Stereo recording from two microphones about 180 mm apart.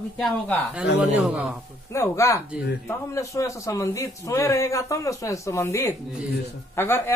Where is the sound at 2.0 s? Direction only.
15° left (ahead or behind).